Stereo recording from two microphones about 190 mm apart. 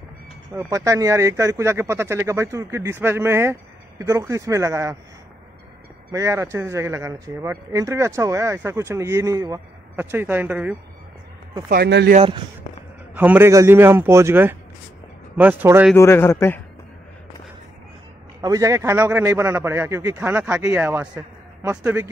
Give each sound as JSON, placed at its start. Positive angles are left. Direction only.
{"t": 0.6, "sound": "speech", "side_deg": -15}
{"t": 6.1, "sound": "speech", "side_deg": -15}
{"t": 11.7, "sound": "speech", "side_deg": -60}
{"t": 12.2, "sound": "speech", "side_deg": -25}
{"t": 13.1, "sound": "speech", "side_deg": -10}
{"t": 16.0, "sound": "a man's voice", "side_deg": 15}
{"t": 18.4, "sound": "speech", "side_deg": -15}